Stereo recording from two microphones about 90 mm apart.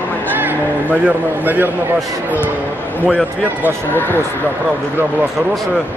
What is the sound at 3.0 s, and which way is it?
Speech, 10° right (ahead or behind).